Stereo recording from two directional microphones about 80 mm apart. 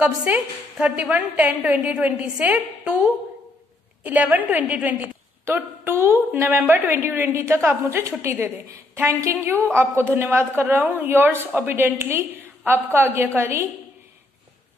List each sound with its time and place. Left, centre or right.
0.0 s a woman's voice: centre; by 13.7 s right